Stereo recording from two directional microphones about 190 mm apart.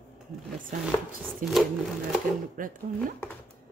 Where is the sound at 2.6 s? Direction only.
45° right (ahead or behind).